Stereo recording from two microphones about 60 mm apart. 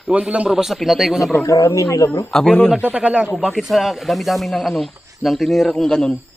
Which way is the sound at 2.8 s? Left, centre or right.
Right.